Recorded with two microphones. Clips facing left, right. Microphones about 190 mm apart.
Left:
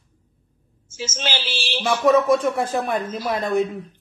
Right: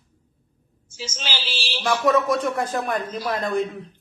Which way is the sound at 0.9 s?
50° left (ahead or behind).